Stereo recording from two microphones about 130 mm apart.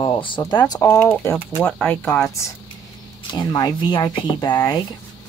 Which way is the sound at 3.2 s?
30° left (ahead or behind).